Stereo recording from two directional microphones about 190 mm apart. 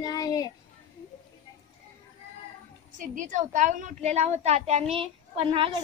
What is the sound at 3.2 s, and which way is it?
A child's voice, 40° right (ahead or behind).